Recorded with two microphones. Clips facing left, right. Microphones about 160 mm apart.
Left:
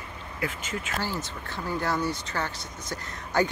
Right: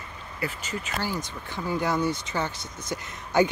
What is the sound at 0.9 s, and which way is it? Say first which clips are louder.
Speech: right 3 dB; 15° right (ahead or behind).